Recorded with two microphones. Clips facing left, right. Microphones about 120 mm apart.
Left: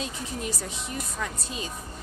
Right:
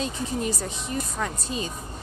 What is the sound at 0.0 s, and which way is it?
A woman's voice, 5° left (ahead or behind).